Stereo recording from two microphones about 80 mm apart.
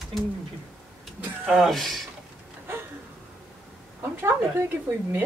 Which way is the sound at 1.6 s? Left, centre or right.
Centre.